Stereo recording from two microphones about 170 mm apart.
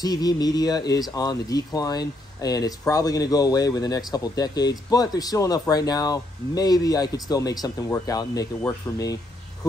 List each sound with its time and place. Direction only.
0.0 s speech: 20° left (ahead or behind)